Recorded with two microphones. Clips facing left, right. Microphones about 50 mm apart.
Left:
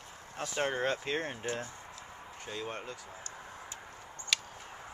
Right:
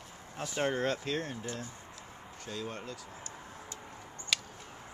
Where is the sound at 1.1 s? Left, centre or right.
Left.